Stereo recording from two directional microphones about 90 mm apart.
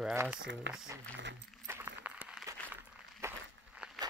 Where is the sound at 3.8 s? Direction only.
10° right (ahead or behind).